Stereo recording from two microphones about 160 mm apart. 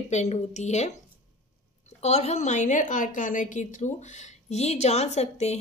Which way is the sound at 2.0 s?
40° left (ahead or behind).